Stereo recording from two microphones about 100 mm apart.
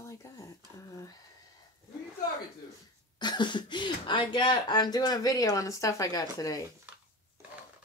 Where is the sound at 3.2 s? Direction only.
45° left (ahead or behind).